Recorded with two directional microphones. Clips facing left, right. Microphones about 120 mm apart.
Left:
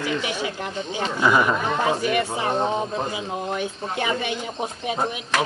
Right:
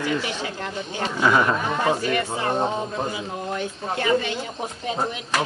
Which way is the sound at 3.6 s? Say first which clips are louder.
Even; 15° left (ahead or behind).